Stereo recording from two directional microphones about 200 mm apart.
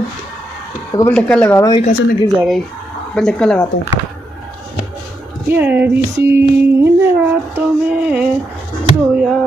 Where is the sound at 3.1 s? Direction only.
5° left (ahead or behind).